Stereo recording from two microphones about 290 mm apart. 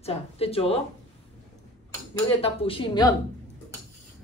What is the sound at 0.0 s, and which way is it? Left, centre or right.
Speech, centre.